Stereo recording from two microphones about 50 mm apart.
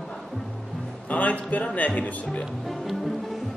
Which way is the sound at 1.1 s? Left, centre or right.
Left.